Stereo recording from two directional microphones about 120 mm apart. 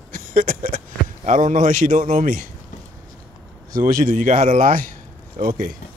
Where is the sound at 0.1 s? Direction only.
90° right.